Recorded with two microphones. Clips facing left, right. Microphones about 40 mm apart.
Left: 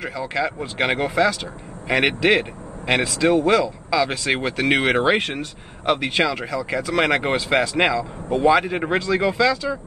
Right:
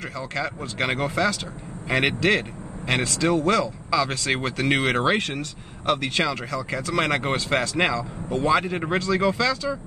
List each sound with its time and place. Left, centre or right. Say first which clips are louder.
0.3 s speech: left 5 dB; left
5.2 s speech: left 2 dB; left